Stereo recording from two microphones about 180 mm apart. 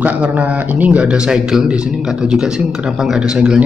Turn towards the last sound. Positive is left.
turn(degrees=-5)  # may be behind; listen again after turning